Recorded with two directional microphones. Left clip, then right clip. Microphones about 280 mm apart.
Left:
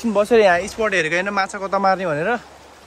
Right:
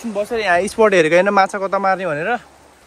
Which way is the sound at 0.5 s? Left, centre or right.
Centre.